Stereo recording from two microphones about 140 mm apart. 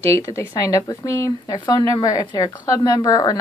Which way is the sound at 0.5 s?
20° left (ahead or behind).